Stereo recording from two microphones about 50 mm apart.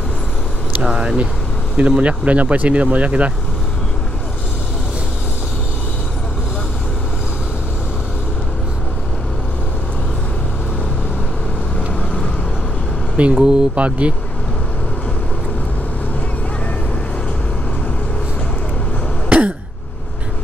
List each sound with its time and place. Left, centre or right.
0.8 s speech: centre
13.2 s speech: centre
19.2 s throat clearing: right